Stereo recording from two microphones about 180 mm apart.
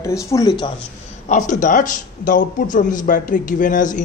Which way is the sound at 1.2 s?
45° left (ahead or behind).